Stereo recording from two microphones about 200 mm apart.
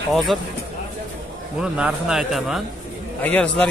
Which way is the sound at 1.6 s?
5° right (ahead or behind).